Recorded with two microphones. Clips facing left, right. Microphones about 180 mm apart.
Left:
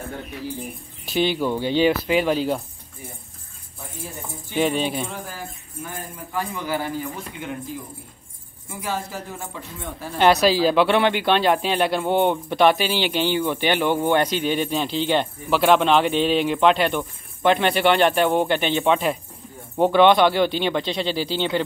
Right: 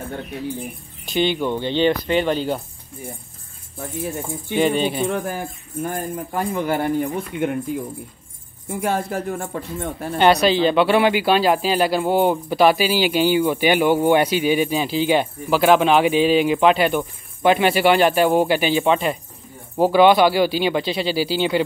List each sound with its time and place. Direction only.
1.0 s speech: 5° left (ahead or behind)
4.6 s speech: centre (ahead or behind)
5.0 s speech: 65° right (ahead or behind)
10.1 s speech: centre (ahead or behind)